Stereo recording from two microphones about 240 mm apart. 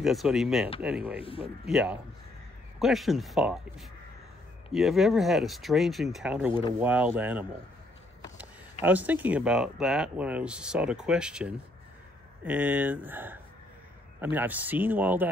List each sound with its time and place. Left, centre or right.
0.0 s speech: centre
1.2 s speech: left
1.7 s a man's voice: centre
8.8 s a man's voice: centre